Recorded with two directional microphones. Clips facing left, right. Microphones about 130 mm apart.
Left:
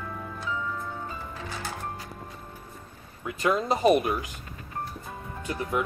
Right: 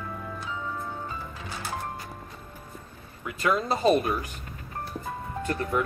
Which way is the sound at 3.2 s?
25° left (ahead or behind).